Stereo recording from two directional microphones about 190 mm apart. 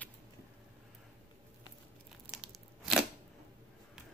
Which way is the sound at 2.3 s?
5° right (ahead or behind).